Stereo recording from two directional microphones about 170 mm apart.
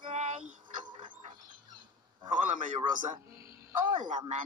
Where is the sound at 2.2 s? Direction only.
45° right (ahead or behind).